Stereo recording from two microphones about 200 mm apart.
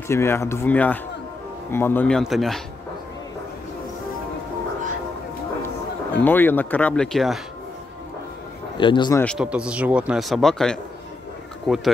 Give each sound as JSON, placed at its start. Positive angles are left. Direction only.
{"t": 0.1, "sound": "speech", "side_deg": 15}
{"t": 6.2, "sound": "speech", "side_deg": 10}
{"t": 8.7, "sound": "speech", "side_deg": 25}
{"t": 9.2, "sound": "speech", "side_deg": 0}